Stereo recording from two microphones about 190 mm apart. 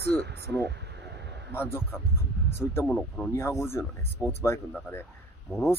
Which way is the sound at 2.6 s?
10° left (ahead or behind).